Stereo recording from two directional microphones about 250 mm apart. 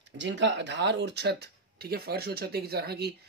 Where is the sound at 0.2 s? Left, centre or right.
Right.